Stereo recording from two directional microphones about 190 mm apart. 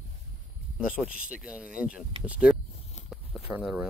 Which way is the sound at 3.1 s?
5° right (ahead or behind).